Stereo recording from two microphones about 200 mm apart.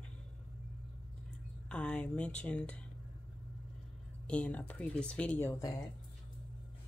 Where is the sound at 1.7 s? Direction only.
5° left (ahead or behind).